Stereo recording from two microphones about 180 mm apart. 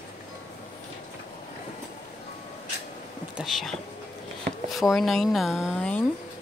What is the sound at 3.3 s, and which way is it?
Speech, centre (ahead or behind).